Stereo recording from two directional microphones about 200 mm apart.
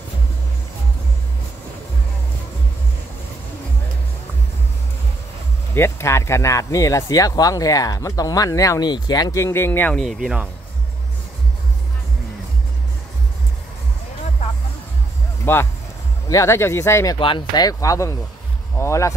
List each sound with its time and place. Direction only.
5.8 s speech: 15° left (ahead or behind); by 10.5 s 5° right (ahead or behind)
15.5 s speech: 10° left (ahead or behind)